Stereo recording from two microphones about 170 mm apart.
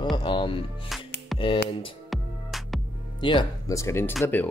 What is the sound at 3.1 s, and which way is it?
Speech, 30° left (ahead or behind).